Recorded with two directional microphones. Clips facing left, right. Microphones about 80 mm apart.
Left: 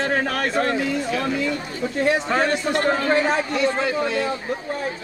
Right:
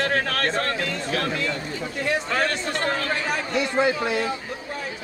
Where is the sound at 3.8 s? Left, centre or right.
Centre.